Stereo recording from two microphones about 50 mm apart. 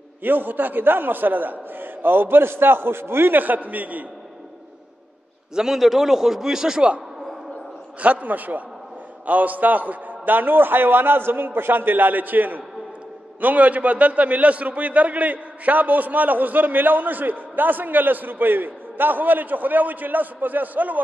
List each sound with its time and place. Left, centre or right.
0.2 s a man's voice: right
5.5 s a man's voice: centre
8.0 s a man's voice: right